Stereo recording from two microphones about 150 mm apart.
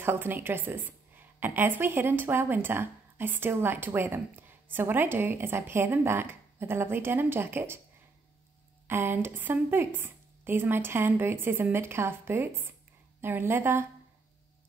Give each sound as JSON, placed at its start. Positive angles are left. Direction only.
{"t": 0.0, "sound": "a woman's voice", "side_deg": -15}
{"t": 8.8, "sound": "a woman's voice", "side_deg": -15}